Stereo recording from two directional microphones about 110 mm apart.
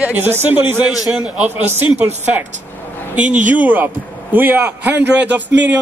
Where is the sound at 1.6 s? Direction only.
20° right (ahead or behind).